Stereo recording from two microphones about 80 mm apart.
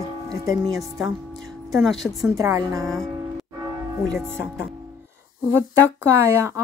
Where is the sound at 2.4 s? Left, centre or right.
Right.